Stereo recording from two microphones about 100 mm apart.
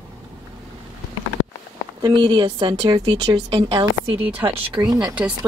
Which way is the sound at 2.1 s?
55° right (ahead or behind).